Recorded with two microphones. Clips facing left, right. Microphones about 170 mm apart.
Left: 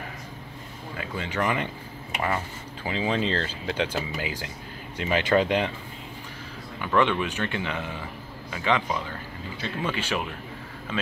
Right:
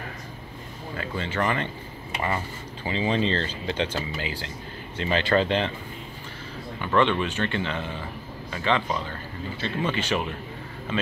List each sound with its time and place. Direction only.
0.9 s speech: 10° left (ahead or behind)
6.8 s speech: 5° left (ahead or behind)